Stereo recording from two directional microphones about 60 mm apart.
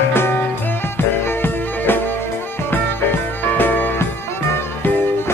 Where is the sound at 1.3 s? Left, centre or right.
Left.